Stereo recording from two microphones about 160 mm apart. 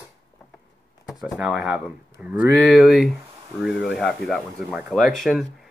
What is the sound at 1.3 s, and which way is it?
Speech, centre (ahead or behind).